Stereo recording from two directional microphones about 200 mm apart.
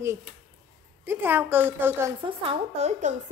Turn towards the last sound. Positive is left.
turn(degrees=-35)  # may be behind; listen again after turning